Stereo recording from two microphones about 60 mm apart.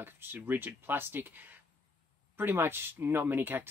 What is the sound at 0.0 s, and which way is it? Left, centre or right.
Speech, right.